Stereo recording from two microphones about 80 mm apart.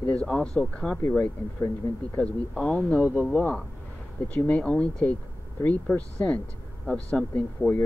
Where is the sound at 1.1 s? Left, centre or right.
Left.